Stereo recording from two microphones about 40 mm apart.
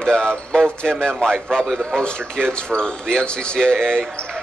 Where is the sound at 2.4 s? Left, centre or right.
Left.